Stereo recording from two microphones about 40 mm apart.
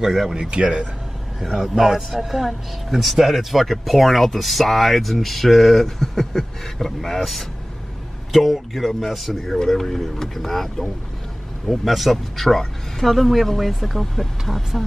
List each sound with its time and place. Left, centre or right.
0.0 s speech: centre
0.3 s speech: centre
1.5 s speech: centre